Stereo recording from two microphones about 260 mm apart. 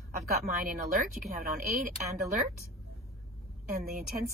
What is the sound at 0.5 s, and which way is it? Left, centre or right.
Speech, right.